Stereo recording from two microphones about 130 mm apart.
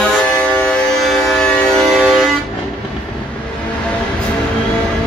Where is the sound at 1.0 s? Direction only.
Centre (ahead or behind).